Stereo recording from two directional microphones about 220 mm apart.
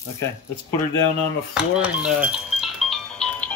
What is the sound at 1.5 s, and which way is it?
Music, 5° right (ahead or behind).